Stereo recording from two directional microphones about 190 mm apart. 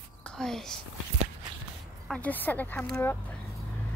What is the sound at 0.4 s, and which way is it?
Speech, centre (ahead or behind).